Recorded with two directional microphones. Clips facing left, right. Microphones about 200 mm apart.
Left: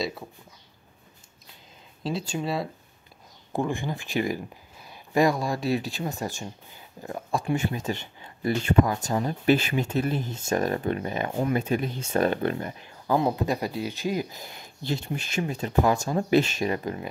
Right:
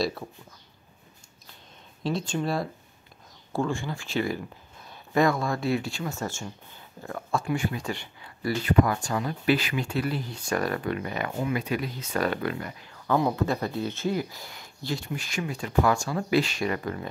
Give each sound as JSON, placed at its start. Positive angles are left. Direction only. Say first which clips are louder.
{"t": 2.0, "sound": "speech", "louder": "right 1 dB", "side_deg": 5}
{"t": 3.5, "sound": "speech", "louder": "left 1 dB", "side_deg": 15}
{"t": 9.0, "sound": "speech", "louder": "left 2 dB", "side_deg": 35}
{"t": 10.1, "sound": "speech", "louder": "left 3 dB", "side_deg": 45}
{"t": 10.4, "sound": "speech", "louder": "left 2 dB", "side_deg": 20}